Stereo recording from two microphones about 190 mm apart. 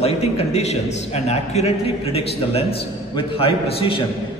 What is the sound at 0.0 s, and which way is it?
A man's voice, 35° left (ahead or behind).